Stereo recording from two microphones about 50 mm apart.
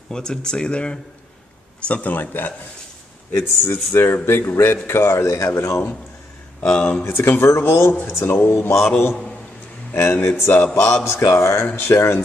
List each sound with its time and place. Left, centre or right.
0.1 s a man's voice: centre; by 2.5 s left
3.3 s speech: left
5.2 s speech: left
5.6 s a man's voice: left
6.6 s speech: left
7.1 s speech: left
9.9 s speech: left